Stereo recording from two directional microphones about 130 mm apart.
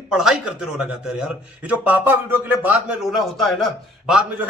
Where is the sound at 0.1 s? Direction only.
5° right (ahead or behind).